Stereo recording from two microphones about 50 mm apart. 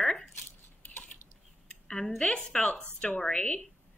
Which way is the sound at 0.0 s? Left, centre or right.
Centre.